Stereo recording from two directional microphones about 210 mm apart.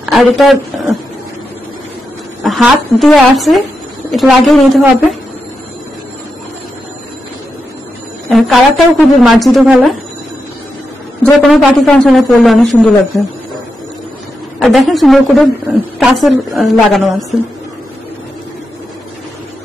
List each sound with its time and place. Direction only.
0.0 s speech: centre (ahead or behind)
2.4 s a man's voice: centre (ahead or behind)
8.3 s a man's voice: centre (ahead or behind)
11.2 s a man's voice: centre (ahead or behind)
14.6 s a man's voice: centre (ahead or behind)